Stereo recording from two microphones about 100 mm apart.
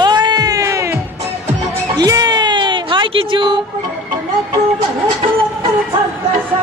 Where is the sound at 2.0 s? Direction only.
40° right (ahead or behind).